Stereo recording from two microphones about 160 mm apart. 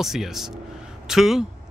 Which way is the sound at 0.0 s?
Centre (ahead or behind).